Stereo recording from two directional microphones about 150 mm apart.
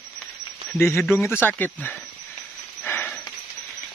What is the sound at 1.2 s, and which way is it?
Speech, 15° left (ahead or behind).